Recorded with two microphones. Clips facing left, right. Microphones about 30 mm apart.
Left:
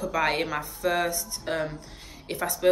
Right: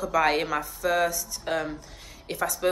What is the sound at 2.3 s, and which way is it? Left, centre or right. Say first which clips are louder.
Speech: right 2 dB; centre.